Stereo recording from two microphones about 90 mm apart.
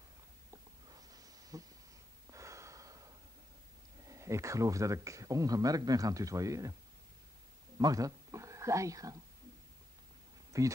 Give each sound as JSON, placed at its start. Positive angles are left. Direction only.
{"t": 0.5, "sound": "a sound", "side_deg": -45}
{"t": 2.3, "sound": "gasp", "side_deg": -35}
{"t": 4.1, "sound": "speech", "side_deg": -35}
{"t": 7.7, "sound": "speech", "side_deg": -40}
{"t": 10.5, "sound": "speech", "side_deg": -35}